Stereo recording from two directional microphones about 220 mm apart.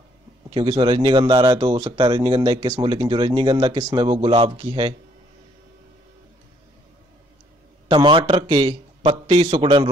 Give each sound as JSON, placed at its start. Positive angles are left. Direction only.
{"t": 0.6, "sound": "speech", "side_deg": -20}
{"t": 7.9, "sound": "speech", "side_deg": -25}